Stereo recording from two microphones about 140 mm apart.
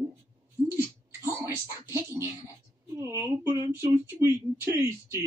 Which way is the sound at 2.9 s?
15° right (ahead or behind).